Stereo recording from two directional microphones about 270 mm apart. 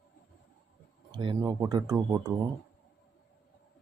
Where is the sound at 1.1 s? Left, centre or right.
Centre.